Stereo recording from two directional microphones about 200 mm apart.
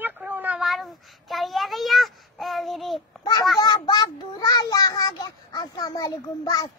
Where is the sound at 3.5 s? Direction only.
20° left (ahead or behind).